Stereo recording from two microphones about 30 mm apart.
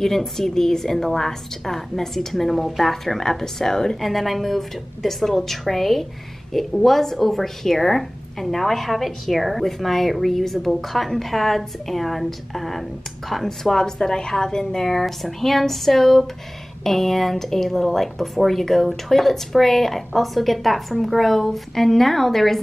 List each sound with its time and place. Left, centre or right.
0.0 s a woman's voice: centre
3.9 s speech: centre
13.5 s a woman's voice: centre
14.9 s a woman's voice: centre